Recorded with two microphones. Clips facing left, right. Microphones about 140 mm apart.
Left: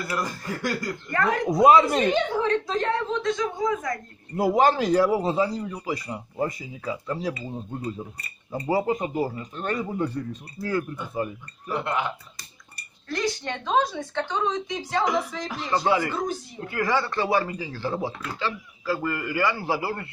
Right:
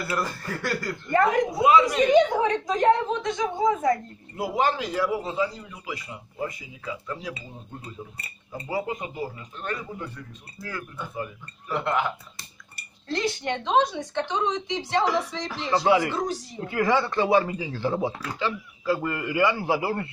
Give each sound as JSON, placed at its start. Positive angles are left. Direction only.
{"t": 0.2, "sound": "speech", "side_deg": 15}
{"t": 1.1, "sound": "speech", "side_deg": -20}
{"t": 1.5, "sound": "a man's voice", "side_deg": 40}
{"t": 2.1, "sound": "speech", "side_deg": -15}
{"t": 4.4, "sound": "a man's voice", "side_deg": 40}
{"t": 8.5, "sound": "a man's voice", "side_deg": 30}
{"t": 11.7, "sound": "speech", "side_deg": 15}
{"t": 13.1, "sound": "speech", "side_deg": -20}